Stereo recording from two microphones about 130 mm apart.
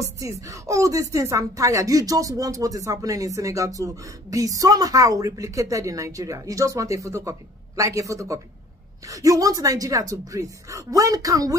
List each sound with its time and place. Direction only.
0.2 s a woman's voice: 25° right (ahead or behind)